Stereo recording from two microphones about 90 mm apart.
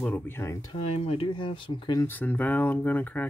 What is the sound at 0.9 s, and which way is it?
Speech, 90° left.